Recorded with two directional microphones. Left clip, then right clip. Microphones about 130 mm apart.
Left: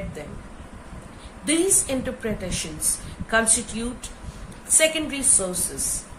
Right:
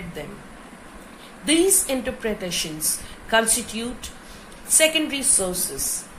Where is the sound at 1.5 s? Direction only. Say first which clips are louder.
Right 3 dB; 15° right (ahead or behind).